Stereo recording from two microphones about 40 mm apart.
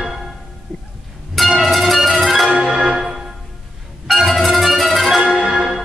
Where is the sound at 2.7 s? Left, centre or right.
Centre.